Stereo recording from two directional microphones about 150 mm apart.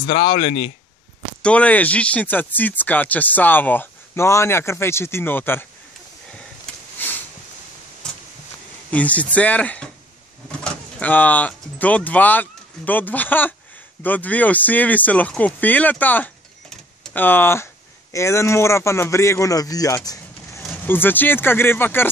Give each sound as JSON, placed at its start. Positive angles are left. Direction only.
{"t": 0.0, "sound": "speech", "side_deg": 35}
{"t": 1.4, "sound": "speech", "side_deg": 10}
{"t": 8.9, "sound": "speech", "side_deg": 10}
{"t": 20.8, "sound": "speech", "side_deg": 15}